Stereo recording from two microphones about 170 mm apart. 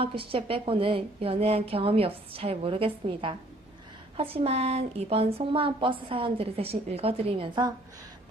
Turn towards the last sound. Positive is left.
turn(degrees=-30)  # may be behind; listen again after turning